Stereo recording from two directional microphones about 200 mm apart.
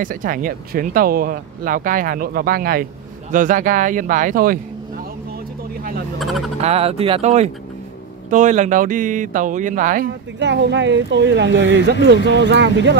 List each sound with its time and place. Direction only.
0.0 s speech: 45° right (ahead or behind)
6.1 s speech: centre (ahead or behind)
6.6 s speech: 30° right (ahead or behind)
10.4 s speech: 60° right (ahead or behind)